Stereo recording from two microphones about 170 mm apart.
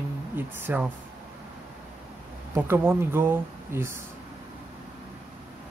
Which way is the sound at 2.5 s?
15° right (ahead or behind).